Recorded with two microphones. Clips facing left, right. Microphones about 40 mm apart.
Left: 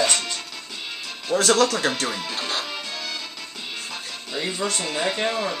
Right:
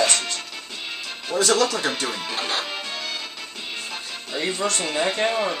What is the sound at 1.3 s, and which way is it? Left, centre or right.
Speech, left.